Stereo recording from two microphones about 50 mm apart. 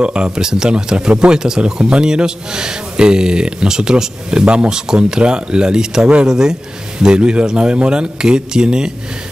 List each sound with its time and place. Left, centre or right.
0.0 s speech: right